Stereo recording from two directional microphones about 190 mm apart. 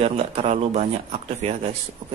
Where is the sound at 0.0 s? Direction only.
30° right (ahead or behind).